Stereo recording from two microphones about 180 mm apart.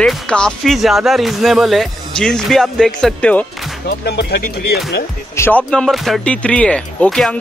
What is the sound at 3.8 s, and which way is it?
Speech, 65° left (ahead or behind).